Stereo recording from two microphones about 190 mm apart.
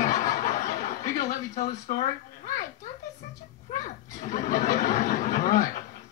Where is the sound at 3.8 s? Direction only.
40° left (ahead or behind).